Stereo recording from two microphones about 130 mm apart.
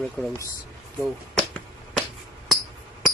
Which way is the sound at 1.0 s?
Centre (ahead or behind).